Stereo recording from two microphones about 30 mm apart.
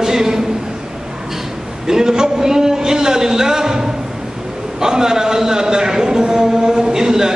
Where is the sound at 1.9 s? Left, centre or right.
Right.